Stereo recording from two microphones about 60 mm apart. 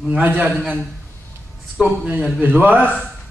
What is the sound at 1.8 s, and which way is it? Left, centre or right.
A man's voice, right.